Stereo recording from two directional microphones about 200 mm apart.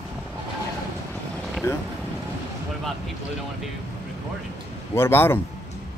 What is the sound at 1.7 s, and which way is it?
Speech, 10° left (ahead or behind).